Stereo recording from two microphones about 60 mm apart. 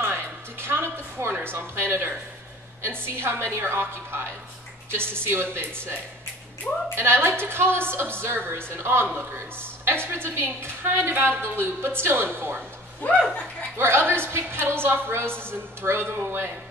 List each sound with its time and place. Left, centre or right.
0.0 s music: right
1.4 s a woman's voice: right
7.0 s a woman's voice: right
13.7 s a woman's voice: right